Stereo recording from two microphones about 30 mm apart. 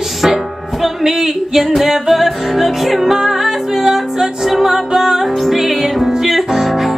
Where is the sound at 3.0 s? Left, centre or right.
Centre.